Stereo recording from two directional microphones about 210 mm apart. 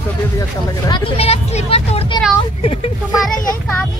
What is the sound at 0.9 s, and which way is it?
Speech, 25° left (ahead or behind).